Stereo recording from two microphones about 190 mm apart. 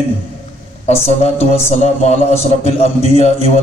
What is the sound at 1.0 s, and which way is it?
A man's voice, 35° left (ahead or behind).